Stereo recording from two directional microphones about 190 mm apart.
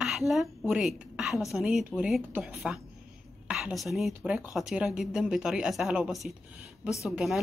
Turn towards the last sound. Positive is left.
turn(degrees=0)  # may be behind; listen again after turning